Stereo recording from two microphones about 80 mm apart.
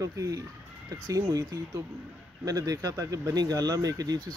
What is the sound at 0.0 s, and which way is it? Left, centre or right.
Speech, right.